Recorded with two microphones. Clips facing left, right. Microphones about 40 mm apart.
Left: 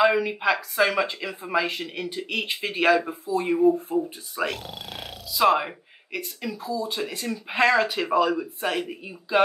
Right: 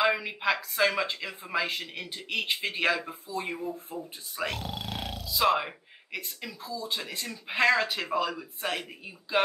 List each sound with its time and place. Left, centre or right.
0.2 s speech: centre
3.5 s speech: centre
4.5 s speech: centre